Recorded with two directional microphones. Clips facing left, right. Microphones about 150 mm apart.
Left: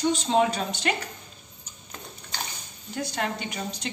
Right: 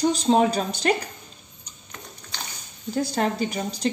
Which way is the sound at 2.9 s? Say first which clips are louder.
Right 6 dB; 35° right (ahead or behind).